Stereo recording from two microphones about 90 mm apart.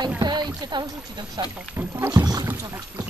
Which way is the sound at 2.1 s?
45° right (ahead or behind).